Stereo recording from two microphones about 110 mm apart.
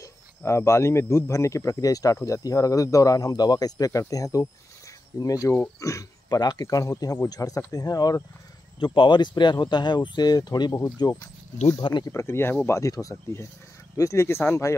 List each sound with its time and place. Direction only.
0.0 s a man's voice: 25° left (ahead or behind)
8.7 s speech: 45° left (ahead or behind)
12.1 s a man's voice: 25° left (ahead or behind)